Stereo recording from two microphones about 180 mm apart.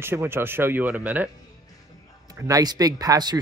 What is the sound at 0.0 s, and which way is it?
Speech, 15° right (ahead or behind).